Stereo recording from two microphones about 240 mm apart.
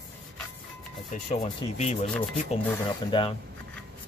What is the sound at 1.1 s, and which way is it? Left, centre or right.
Speech, left.